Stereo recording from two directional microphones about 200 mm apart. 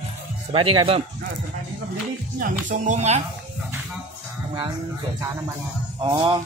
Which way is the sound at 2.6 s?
35° right (ahead or behind).